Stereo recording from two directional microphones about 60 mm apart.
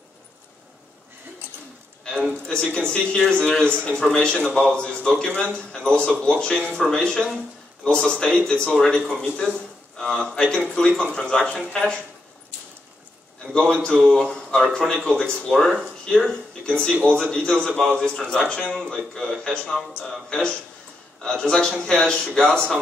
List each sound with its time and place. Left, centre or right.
2.3 s speech: centre
13.5 s speech: centre
16.6 s speech: centre
17.6 s speech: centre
17.9 s speech: centre